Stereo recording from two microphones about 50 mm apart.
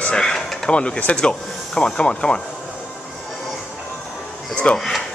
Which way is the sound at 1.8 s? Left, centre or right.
Centre.